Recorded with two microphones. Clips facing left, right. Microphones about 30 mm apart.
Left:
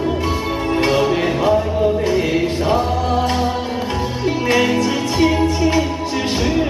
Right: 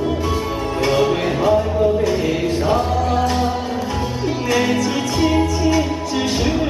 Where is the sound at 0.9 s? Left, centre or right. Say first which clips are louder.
Left 1 dB; centre.